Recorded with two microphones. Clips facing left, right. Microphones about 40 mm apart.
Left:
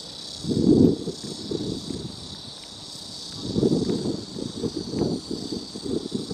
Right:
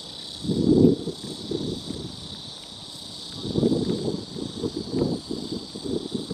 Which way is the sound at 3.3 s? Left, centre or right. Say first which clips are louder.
Left 1 dB; right.